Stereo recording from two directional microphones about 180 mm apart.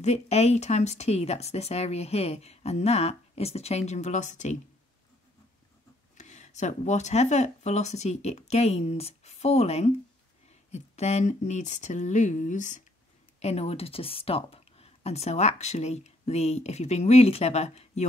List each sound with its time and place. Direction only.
0.0 s speech: 35° left (ahead or behind)
6.1 s speech: 40° left (ahead or behind)